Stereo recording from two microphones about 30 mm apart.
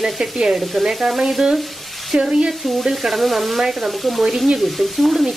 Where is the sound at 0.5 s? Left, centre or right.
Centre.